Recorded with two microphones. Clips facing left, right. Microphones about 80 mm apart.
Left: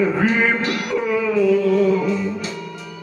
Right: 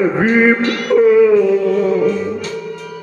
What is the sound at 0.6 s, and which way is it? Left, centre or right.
Music, right.